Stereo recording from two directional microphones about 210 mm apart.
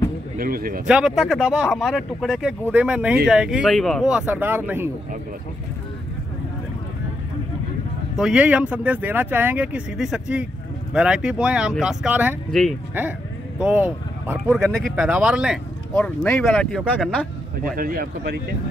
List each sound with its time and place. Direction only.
0.4 s speech: 45° right (ahead or behind)
0.8 s speech: 5° right (ahead or behind)
8.2 s speech: 5° right (ahead or behind)
12.4 s speech: 5° left (ahead or behind)
13.6 s speech: 5° right (ahead or behind)
17.7 s speech: 45° right (ahead or behind)